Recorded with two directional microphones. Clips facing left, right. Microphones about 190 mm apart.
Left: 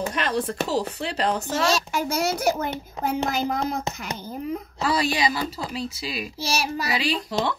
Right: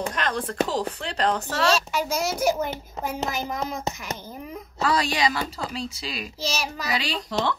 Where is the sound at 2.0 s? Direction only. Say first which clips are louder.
Left 1 dB; 60° left (ahead or behind).